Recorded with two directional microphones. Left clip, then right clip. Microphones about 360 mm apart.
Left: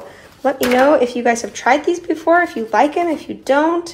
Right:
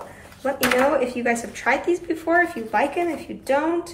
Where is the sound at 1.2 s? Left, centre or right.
Centre.